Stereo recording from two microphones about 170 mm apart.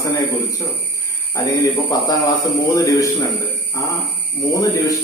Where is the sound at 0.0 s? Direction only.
15° left (ahead or behind).